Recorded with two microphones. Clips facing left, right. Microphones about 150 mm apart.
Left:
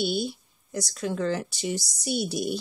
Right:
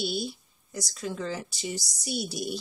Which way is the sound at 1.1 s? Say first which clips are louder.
Left 6 dB; 60° left (ahead or behind).